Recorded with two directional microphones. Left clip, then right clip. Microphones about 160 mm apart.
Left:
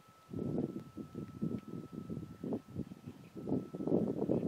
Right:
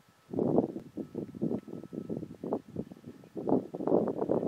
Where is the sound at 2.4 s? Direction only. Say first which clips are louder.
Right 6 dB; 30° right (ahead or behind).